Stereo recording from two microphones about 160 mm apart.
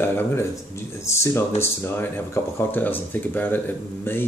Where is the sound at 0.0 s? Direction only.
15° left (ahead or behind).